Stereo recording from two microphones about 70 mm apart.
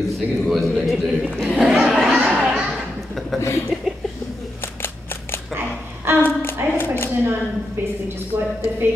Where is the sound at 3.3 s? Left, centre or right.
Left.